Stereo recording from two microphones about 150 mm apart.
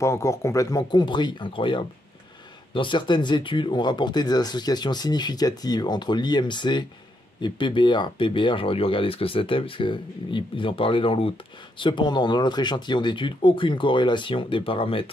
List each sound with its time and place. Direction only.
0.0 s speech: 20° left (ahead or behind); by 15.0 s 35° left (ahead or behind)